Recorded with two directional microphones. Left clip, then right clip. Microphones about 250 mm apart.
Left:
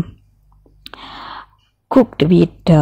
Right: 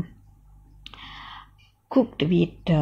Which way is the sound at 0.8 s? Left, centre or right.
Left.